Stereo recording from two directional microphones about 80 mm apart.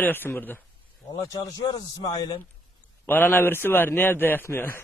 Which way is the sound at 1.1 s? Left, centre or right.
Left.